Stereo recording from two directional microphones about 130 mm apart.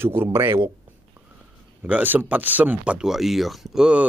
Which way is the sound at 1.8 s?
10° right (ahead or behind).